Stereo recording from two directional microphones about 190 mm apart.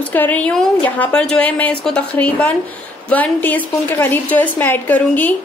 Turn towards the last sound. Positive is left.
turn(degrees=10)  # may be behind; listen again after turning